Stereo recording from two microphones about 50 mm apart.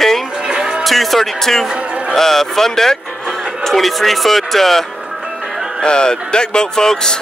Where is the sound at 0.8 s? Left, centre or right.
Centre.